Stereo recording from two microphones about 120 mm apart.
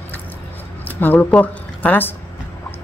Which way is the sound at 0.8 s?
15° left (ahead or behind).